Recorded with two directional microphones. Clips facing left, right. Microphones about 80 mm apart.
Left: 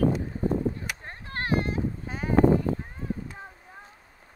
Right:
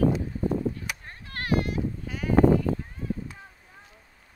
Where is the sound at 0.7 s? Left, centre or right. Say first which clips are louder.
Left 1 dB; left.